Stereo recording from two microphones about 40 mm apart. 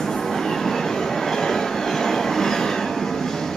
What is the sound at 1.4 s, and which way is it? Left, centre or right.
Train, centre.